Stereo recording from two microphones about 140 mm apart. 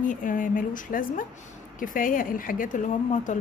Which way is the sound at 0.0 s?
70° left (ahead or behind).